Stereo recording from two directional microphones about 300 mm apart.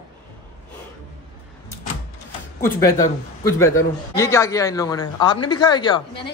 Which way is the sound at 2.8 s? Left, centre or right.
Centre.